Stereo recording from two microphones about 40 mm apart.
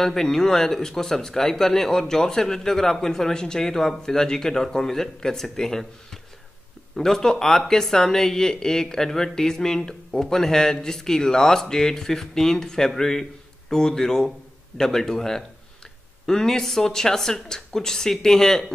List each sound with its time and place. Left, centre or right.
0.0 s speech: centre
7.0 s speech: centre